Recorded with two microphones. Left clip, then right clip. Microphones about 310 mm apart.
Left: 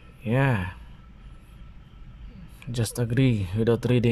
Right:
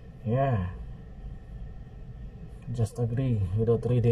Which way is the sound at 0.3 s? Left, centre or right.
Left.